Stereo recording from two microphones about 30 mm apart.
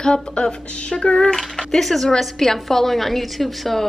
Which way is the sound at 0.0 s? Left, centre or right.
Left.